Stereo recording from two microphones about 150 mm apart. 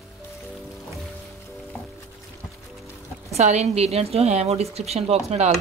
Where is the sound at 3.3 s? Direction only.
50° right (ahead or behind).